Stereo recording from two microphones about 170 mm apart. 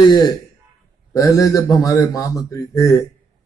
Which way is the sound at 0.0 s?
25° left (ahead or behind).